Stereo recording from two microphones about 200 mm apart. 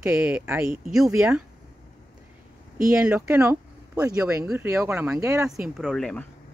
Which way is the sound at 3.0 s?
5° right (ahead or behind).